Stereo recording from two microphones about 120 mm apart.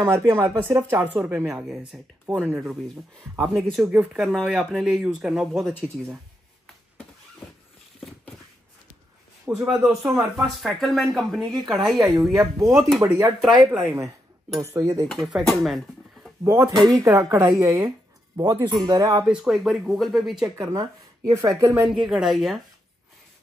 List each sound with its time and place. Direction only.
0.1 s speech: 20° right (ahead or behind)
1.7 s speech: centre (ahead or behind)
9.5 s speech: 20° right (ahead or behind)
9.8 s speech: 5° right (ahead or behind)
12.0 s speech: 30° right (ahead or behind)
15.0 s speech: centre (ahead or behind)
16.4 s speech: 25° right (ahead or behind)
19.2 s speech: 5° right (ahead or behind)
20.7 s speech: 30° right (ahead or behind)
21.8 s speech: 5° right (ahead or behind)